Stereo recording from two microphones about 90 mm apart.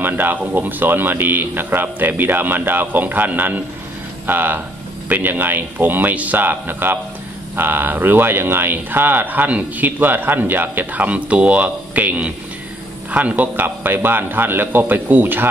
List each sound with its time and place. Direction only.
0.0 s speech: 20° right (ahead or behind)